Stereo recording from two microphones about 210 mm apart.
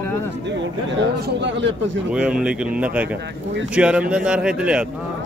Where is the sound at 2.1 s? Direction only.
5° right (ahead or behind).